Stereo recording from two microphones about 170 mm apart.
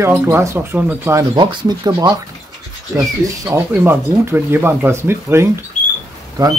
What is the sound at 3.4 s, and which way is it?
Speech, 15° right (ahead or behind).